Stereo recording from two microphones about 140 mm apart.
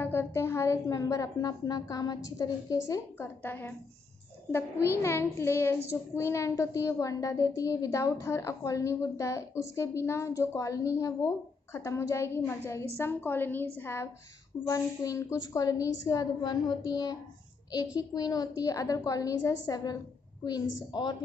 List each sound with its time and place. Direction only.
0.0 s a woman's voice: 20° left (ahead or behind)